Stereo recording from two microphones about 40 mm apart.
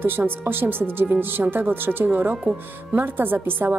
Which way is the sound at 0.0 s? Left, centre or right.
Right.